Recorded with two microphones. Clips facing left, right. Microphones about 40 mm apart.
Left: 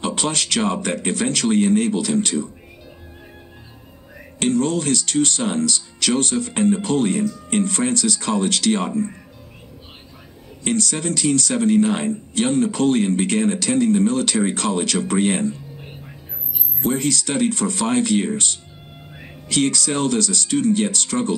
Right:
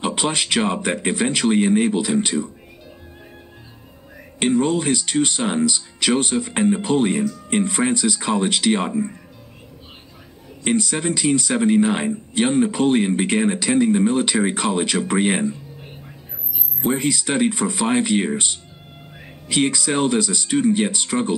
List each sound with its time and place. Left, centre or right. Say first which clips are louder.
0.0 s speech: right 1 dB; centre
4.4 s speech: right 1 dB; centre
10.6 s speech: right 1 dB; centre
16.8 s speech: even; centre